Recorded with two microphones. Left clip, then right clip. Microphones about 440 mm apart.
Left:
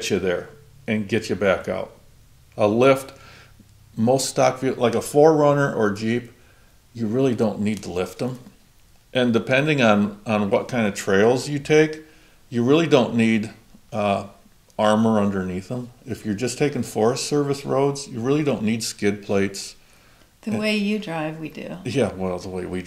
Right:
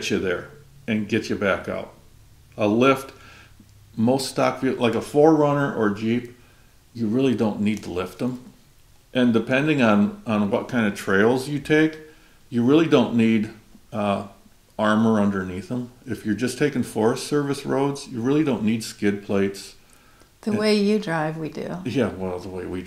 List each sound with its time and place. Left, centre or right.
0.0 s speech: left
20.3 s speech: right
21.8 s speech: left